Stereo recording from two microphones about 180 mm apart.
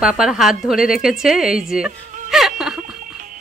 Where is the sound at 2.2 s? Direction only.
Centre (ahead or behind).